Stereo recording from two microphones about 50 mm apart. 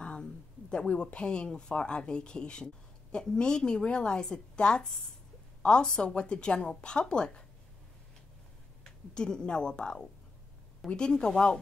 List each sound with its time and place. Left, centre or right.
0.0 s a sound: centre
1.1 s a woman's voice: centre
8.8 s a woman's voice: centre